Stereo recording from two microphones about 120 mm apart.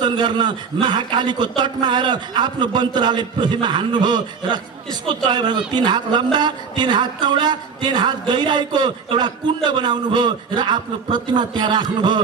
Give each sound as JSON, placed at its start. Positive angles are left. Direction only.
{"t": 0.0, "sound": "a man's voice", "side_deg": -40}